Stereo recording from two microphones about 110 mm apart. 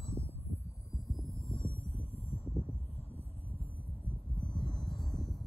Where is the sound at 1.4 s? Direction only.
55° left (ahead or behind).